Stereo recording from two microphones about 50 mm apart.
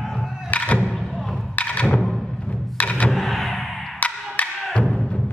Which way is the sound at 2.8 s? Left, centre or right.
Left.